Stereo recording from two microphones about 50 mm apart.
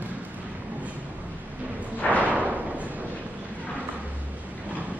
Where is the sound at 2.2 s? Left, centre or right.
Right.